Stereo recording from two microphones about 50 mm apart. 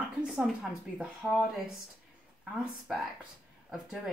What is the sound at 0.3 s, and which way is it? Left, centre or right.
Speech, centre.